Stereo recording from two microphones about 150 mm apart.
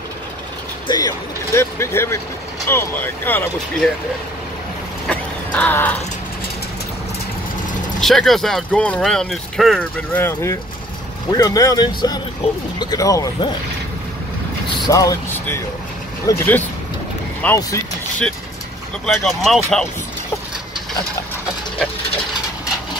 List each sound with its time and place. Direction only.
0.8 s speech: 25° left (ahead or behind)
5.0 s a sound: 10° left (ahead or behind)
8.0 s speech: centre (ahead or behind)
9.8 s speech: 15° left (ahead or behind)
14.9 s speech: 20° left (ahead or behind)
19.0 s speech: centre (ahead or behind)